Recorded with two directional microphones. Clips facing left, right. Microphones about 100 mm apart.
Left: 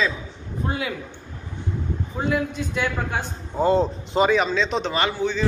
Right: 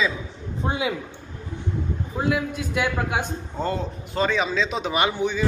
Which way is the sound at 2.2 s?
5° right (ahead or behind).